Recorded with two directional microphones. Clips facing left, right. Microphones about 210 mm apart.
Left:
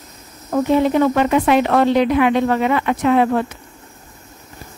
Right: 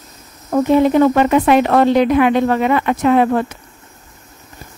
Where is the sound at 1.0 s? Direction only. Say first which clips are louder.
Right 3 dB; 45° right (ahead or behind).